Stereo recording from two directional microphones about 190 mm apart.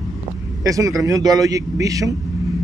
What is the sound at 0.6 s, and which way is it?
Speech, 15° right (ahead or behind).